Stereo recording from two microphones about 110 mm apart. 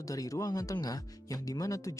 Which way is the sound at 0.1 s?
30° left (ahead or behind).